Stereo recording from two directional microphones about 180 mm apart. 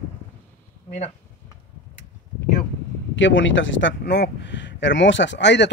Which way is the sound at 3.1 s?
90° left.